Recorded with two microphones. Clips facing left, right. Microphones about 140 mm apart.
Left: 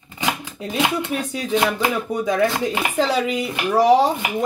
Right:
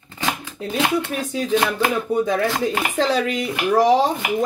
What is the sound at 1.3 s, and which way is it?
Speech, 15° left (ahead or behind).